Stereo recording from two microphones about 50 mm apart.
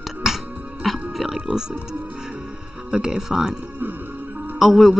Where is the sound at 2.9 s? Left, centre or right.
Centre.